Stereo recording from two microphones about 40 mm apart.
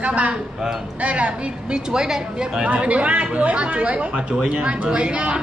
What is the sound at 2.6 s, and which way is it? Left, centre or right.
A woman's voice, right.